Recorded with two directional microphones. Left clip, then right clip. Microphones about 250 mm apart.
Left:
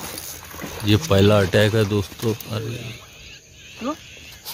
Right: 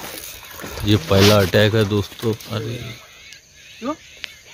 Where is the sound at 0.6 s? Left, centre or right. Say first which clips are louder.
Right 1 dB; centre.